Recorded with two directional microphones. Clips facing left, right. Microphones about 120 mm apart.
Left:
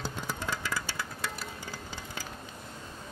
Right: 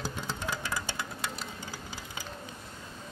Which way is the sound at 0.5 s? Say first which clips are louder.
Even; 20° right (ahead or behind).